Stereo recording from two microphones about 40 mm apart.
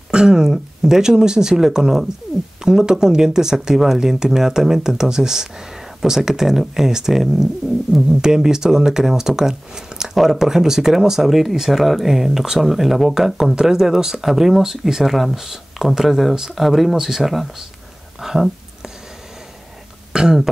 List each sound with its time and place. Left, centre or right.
0.1 s speech: centre
8.2 s speech: centre
20.1 s throat clearing: centre